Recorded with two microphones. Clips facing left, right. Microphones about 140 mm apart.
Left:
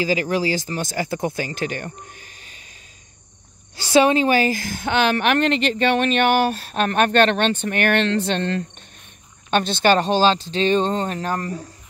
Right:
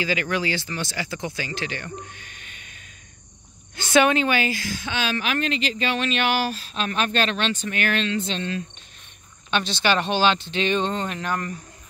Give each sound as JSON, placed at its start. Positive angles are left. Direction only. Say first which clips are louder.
{"t": 0.0, "sound": "a woman's voice", "louder": "left 4 dB", "side_deg": 35}